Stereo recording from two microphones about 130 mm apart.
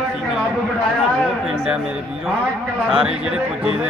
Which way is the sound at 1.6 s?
5° right (ahead or behind).